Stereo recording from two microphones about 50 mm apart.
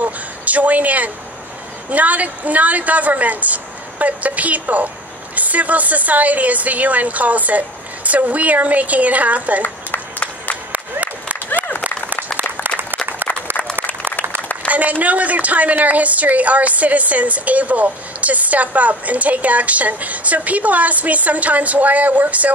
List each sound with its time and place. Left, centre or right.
0.0 s a sound: right
1.9 s a woman's voice: right
9.6 s applause: left
10.7 s applause: right
12.6 s applause: right
14.7 s a woman's voice: right